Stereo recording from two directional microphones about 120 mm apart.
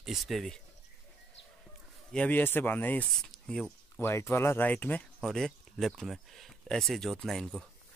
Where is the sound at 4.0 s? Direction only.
20° left (ahead or behind).